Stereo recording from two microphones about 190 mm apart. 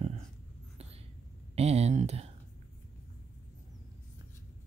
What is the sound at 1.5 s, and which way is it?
Speech, 35° right (ahead or behind).